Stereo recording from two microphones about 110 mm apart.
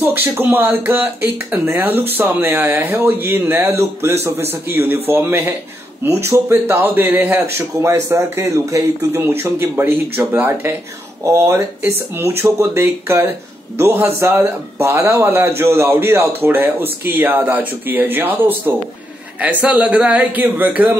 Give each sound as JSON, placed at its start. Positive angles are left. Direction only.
{"t": 0.0, "sound": "speech", "side_deg": -20}